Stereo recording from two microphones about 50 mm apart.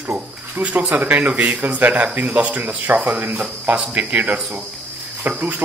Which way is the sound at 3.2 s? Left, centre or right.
Right.